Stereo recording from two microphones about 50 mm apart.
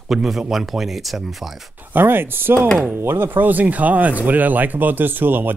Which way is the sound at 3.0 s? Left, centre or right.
Right.